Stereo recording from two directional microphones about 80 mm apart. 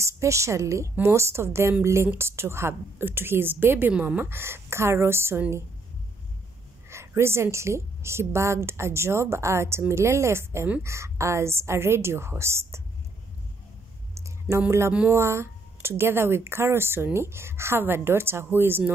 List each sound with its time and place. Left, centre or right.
0.0 s a woman's voice: right; by 4.2 s centre
4.2 s a woman's voice: right
6.9 s a woman's voice: right
14.7 s a woman's voice: right